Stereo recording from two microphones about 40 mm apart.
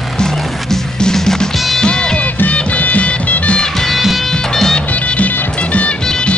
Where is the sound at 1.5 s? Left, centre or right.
Centre.